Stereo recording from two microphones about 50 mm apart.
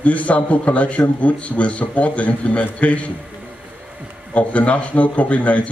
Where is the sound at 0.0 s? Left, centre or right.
Left.